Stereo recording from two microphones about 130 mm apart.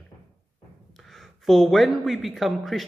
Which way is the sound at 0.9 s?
Centre (ahead or behind).